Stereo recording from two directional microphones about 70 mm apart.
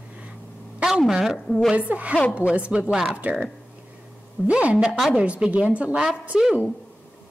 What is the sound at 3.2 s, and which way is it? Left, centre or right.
Speech, centre.